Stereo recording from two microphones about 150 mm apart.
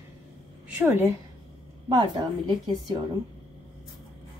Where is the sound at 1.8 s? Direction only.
25° right (ahead or behind).